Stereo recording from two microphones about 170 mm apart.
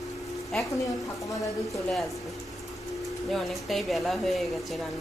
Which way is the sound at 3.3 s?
Centre (ahead or behind).